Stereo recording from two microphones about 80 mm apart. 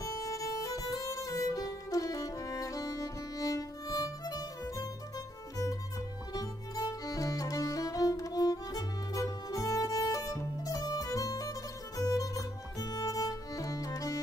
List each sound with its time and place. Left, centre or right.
0.0 s music: left